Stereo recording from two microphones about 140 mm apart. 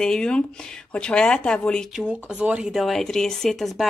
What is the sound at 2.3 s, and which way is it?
A woman's voice, 5° right (ahead or behind).